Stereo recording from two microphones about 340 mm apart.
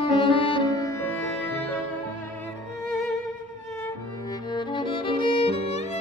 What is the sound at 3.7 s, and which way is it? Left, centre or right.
Music, centre.